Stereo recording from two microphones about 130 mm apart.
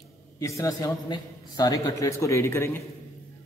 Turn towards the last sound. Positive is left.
turn(degrees=20)  # may be behind; listen again after turning